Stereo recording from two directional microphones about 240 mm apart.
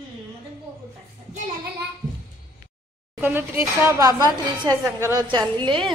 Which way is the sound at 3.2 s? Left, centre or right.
Centre.